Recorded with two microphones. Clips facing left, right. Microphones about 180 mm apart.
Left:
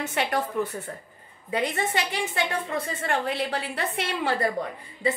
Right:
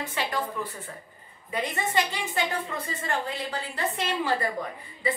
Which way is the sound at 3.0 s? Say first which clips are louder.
Left 3 dB; 70° left (ahead or behind).